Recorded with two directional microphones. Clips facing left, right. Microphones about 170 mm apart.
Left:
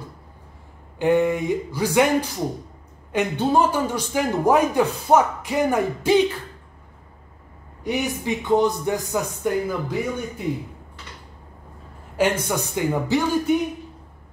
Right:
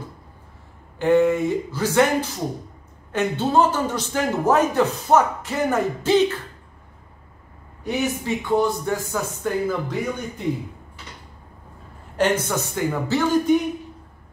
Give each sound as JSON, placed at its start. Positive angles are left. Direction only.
{"t": 0.9, "sound": "a man's voice", "side_deg": 15}
{"t": 3.1, "sound": "a man's voice", "side_deg": 15}
{"t": 7.8, "sound": "a man's voice", "side_deg": 15}
{"t": 12.2, "sound": "a man's voice", "side_deg": 10}